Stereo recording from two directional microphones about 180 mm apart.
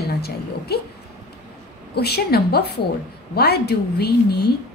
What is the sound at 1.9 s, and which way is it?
A woman's voice, 60° left (ahead or behind).